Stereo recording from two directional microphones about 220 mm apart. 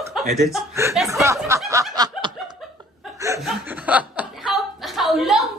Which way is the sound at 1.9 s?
20° right (ahead or behind).